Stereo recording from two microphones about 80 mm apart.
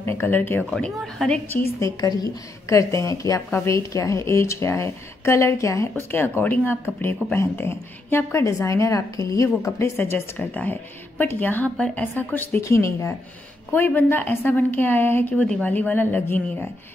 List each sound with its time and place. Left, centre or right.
0.0 s a woman's voice: left; by 1.4 s centre
2.0 s a woman's voice: left
2.7 s a woman's voice: left
5.9 s a woman's voice: left
12.5 s a woman's voice: left
13.7 s a woman's voice: left
15.3 s a woman's voice: centre